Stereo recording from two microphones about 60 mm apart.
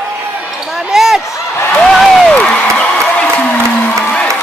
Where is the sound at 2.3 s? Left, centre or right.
Left.